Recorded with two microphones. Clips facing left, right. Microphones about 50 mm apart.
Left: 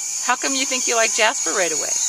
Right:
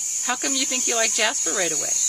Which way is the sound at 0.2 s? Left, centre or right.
Left.